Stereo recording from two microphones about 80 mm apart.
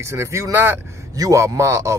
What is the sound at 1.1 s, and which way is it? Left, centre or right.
Speech, right.